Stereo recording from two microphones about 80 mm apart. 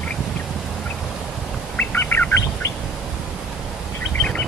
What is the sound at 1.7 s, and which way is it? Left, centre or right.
Bird, left.